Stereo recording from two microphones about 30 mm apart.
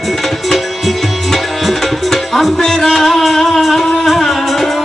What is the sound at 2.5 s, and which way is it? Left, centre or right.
Music, left.